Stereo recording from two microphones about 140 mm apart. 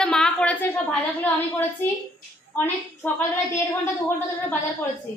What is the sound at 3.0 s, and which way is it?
Speech, 15° left (ahead or behind).